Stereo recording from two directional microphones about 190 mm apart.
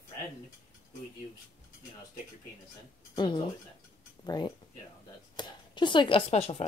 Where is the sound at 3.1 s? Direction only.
25° left (ahead or behind).